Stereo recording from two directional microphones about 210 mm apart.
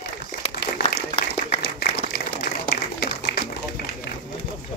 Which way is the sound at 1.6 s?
50° left (ahead or behind).